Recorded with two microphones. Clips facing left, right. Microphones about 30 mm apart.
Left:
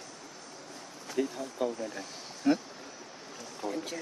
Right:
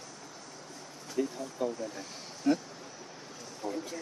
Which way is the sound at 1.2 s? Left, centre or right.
Left.